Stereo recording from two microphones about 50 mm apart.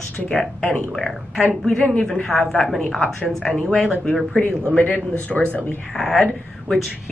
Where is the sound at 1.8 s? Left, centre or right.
Left.